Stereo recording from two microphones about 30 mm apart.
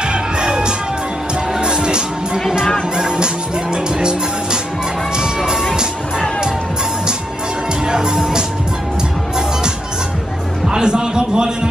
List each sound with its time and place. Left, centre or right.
0.0 s music: right
7.8 s music: right
10.7 s a sound: right